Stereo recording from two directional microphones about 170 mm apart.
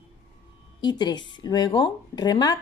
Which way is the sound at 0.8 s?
25° left (ahead or behind).